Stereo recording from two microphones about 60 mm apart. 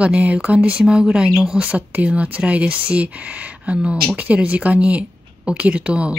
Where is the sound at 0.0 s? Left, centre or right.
Right.